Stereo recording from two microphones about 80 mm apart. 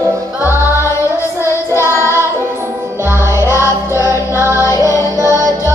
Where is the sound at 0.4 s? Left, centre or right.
Left.